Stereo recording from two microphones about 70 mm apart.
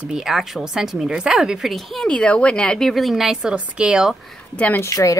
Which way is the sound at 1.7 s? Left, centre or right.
Centre.